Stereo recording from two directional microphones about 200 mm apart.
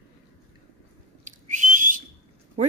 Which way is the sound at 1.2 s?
40° right (ahead or behind).